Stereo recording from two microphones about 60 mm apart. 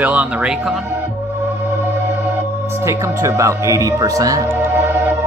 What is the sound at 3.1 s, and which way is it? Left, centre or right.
Speech, right.